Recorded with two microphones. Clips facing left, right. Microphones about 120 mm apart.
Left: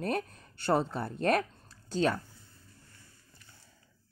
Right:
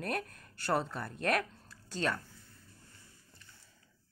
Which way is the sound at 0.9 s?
35° left (ahead or behind).